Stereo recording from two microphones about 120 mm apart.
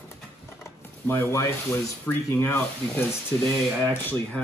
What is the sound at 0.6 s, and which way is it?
Rub, 20° left (ahead or behind).